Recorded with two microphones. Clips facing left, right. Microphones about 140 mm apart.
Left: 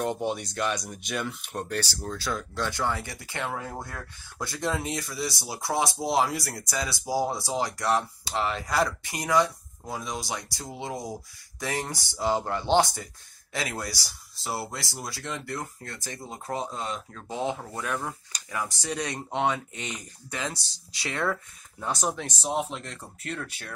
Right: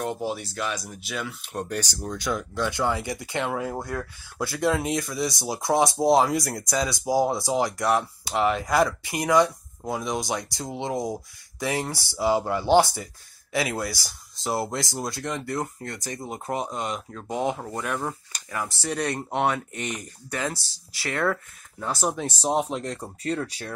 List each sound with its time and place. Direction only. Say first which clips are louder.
0.0 s speech: even; centre (ahead or behind)
19.1 s speech: even; 10° right (ahead or behind)
20.5 s speech: right 2 dB; 20° left (ahead or behind)
21.3 s speech: right 3 dB; 5° left (ahead or behind)
22.4 s speech: right 5 dB; 35° right (ahead or behind)